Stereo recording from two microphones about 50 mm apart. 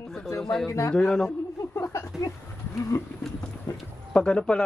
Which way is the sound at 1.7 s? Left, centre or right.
Left.